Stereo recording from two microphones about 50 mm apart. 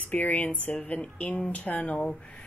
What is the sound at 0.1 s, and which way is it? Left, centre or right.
A woman's voice, left.